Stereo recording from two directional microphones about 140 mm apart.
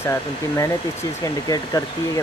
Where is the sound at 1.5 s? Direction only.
25° left (ahead or behind).